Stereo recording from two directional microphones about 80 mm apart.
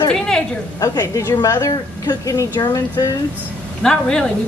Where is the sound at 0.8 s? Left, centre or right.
Left.